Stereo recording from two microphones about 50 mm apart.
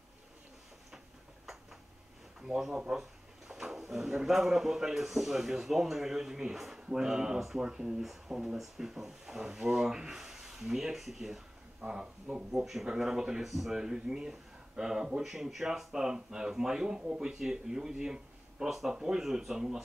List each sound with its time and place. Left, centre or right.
0.9 s tick-tock: centre
2.4 s speech: centre
11.8 s speech: centre